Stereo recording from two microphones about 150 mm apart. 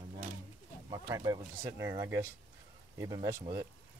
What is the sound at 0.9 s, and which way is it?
Speech, 25° right (ahead or behind).